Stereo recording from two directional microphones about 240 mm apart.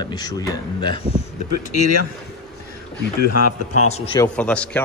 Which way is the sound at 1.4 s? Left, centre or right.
Left.